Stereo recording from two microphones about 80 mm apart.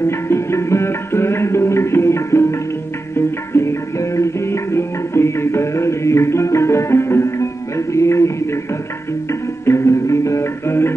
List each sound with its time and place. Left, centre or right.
0.0 s music: left